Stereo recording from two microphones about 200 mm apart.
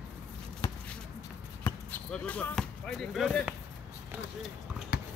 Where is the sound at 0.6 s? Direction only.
20° left (ahead or behind).